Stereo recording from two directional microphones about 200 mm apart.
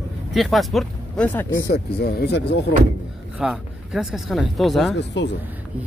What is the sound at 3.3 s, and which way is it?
Speech, 5° right (ahead or behind).